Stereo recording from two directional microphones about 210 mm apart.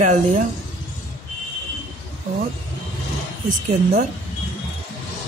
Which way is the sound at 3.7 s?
40° right (ahead or behind).